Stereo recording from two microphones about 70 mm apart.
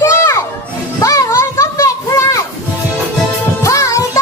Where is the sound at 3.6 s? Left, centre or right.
Left.